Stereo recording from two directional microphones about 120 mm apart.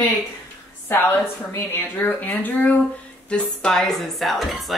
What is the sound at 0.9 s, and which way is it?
A woman's voice, 15° left (ahead or behind).